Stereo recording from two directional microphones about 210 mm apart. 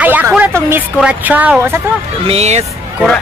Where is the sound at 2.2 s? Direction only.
30° right (ahead or behind).